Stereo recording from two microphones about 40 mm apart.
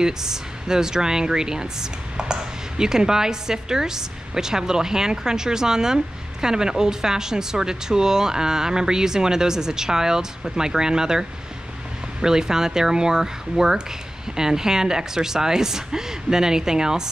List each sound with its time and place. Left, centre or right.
0.0 s speech: centre